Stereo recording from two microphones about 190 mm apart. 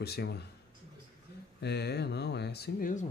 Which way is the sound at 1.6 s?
60° left (ahead or behind).